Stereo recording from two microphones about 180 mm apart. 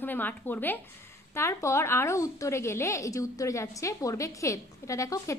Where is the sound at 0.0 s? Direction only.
10° left (ahead or behind).